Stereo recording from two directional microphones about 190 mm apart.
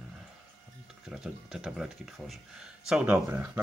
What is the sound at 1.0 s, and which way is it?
Speech, 5° right (ahead or behind).